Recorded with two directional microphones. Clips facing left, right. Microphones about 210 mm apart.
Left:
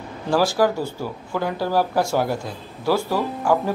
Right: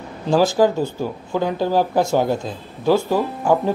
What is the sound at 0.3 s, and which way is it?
Speech, 20° right (ahead or behind).